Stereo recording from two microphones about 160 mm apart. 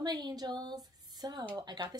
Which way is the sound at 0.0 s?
25° right (ahead or behind).